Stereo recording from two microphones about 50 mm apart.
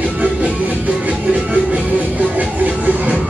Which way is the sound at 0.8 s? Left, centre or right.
Right.